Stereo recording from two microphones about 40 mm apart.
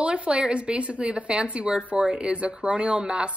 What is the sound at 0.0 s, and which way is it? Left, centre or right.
A woman's voice, right.